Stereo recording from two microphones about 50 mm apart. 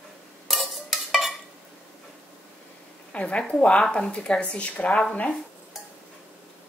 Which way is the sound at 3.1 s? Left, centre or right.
Left.